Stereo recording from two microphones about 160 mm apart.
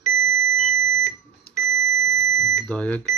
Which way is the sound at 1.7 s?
15° right (ahead or behind).